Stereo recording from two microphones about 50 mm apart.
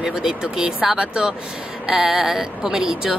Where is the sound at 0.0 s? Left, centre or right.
Centre.